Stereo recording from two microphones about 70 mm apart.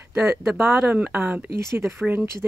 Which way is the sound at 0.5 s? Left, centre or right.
Right.